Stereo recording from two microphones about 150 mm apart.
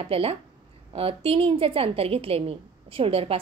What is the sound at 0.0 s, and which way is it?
A woman's voice, 40° right (ahead or behind).